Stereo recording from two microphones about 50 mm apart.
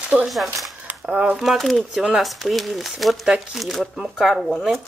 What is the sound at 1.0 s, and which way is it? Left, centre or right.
Speech, right.